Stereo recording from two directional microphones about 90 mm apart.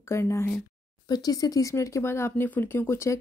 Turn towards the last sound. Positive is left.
turn(degrees=30)  # may be behind; listen again after turning